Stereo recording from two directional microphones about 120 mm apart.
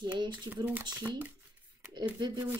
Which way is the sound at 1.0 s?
15° right (ahead or behind).